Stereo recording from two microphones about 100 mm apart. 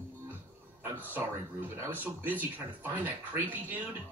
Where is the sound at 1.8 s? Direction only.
20° right (ahead or behind).